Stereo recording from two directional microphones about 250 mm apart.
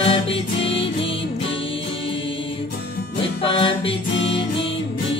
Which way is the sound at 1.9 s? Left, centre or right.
Left.